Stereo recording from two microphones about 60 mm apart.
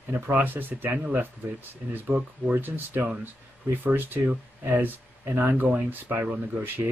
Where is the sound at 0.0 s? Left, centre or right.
Right.